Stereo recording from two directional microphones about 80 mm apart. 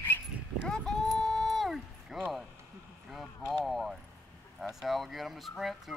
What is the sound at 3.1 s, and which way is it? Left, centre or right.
Clip-clop, centre.